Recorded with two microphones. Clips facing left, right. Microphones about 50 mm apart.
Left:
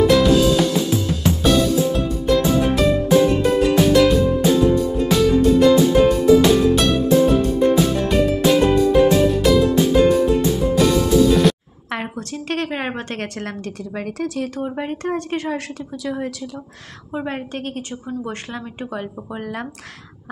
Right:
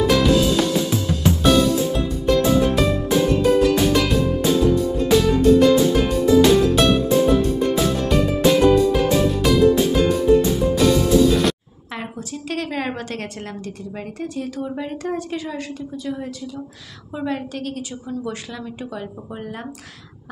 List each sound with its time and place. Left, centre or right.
0.0 s music: centre
11.9 s a sound: left
13.4 s a woman's voice: left
14.6 s a woman's voice: left
17.1 s speech: left